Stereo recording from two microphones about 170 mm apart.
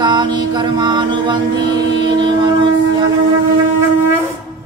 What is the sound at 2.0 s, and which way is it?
Mantra, 25° right (ahead or behind).